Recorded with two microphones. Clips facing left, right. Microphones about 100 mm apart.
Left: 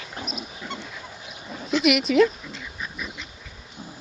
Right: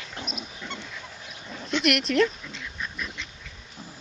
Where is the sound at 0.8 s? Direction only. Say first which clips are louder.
Left 2 dB; 5° left (ahead or behind).